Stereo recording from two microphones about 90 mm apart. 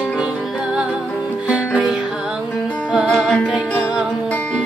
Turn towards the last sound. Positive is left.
turn(degrees=10)  # may be behind; listen again after turning